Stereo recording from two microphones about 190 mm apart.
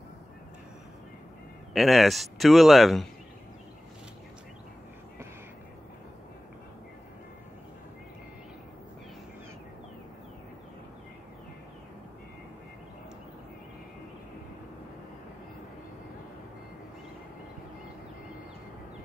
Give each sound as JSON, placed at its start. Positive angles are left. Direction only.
{"t": 1.7, "sound": "speech", "side_deg": 0}